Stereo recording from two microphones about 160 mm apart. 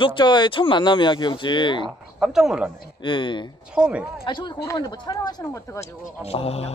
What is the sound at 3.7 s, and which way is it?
Speech, 10° right (ahead or behind).